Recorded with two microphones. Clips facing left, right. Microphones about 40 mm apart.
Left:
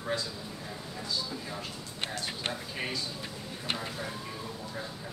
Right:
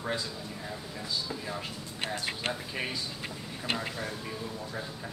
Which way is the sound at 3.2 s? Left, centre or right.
Right.